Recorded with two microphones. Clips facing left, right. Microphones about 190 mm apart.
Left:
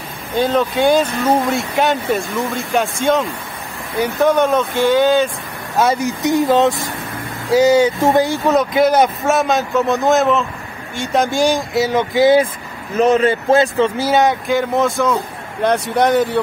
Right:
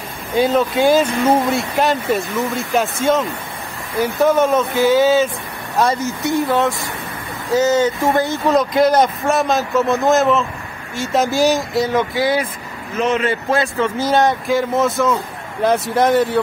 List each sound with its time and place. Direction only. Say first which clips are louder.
0.4 s speech: even; 5° right (ahead or behind)
5.8 s speech: left 2 dB; 10° left (ahead or behind)
11.9 s speech: left 8 dB; 20° left (ahead or behind)
13.0 s speech: left 5 dB; 35° left (ahead or behind)
13.5 s speech: left 5 dB; 20° left (ahead or behind)
14.0 s speech: left 1 dB; centre (ahead or behind)